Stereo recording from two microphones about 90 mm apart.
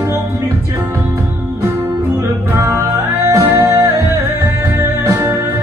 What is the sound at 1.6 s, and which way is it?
Music, 30° right (ahead or behind).